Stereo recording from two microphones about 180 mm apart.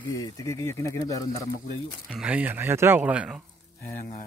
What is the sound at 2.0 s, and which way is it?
Speech, 5° right (ahead or behind).